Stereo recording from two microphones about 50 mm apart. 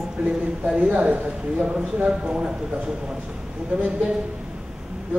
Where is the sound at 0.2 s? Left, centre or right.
Right.